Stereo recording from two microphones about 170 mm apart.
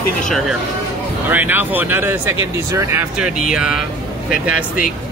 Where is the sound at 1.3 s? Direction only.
10° right (ahead or behind).